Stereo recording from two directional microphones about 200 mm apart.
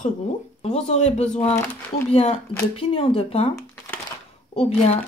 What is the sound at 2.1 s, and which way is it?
Speech, 30° left (ahead or behind).